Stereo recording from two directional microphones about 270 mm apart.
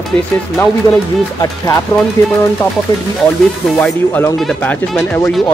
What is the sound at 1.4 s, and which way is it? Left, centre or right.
Speech, centre.